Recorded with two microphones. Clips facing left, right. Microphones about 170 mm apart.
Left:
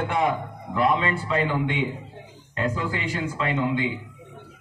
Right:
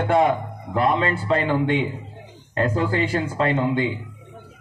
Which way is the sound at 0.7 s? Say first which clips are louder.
Right 2 dB; 45° right (ahead or behind).